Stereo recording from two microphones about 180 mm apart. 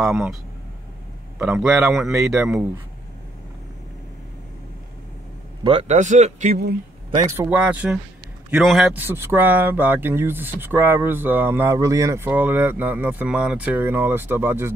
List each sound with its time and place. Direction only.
0.0 s a man's voice: centre (ahead or behind)
1.4 s a man's voice: 5° right (ahead or behind)
5.6 s speech: 30° right (ahead or behind)
7.3 s a man's voice: 10° right (ahead or behind)